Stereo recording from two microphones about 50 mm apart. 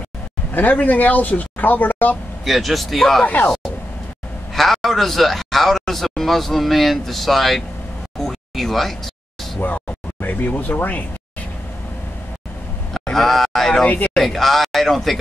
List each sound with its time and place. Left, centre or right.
0.5 s speech: left
2.4 s a man's voice: centre
3.4 s a sound: centre
4.6 s a man's voice: centre
8.2 s a sound: centre
10.2 s speech: left
12.9 s speech: centre
13.8 s speech: left
14.1 s a man's voice: centre